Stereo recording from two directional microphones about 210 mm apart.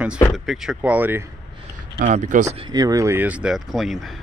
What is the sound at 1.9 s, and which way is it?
Speech, 35° right (ahead or behind).